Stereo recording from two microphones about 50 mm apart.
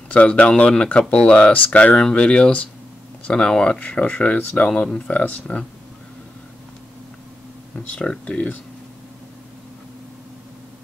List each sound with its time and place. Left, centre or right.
0.1 s speech: left
2.0 s speech: centre
4.8 s speech: centre
5.1 s speech: left
7.9 s speech: centre